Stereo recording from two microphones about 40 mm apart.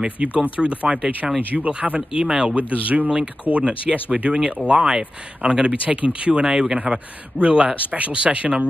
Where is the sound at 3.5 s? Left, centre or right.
Right.